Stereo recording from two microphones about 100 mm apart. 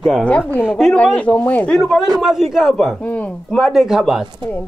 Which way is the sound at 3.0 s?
15° left (ahead or behind).